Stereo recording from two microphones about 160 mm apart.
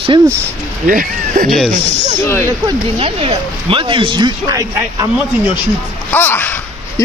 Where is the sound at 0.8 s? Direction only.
60° right (ahead or behind).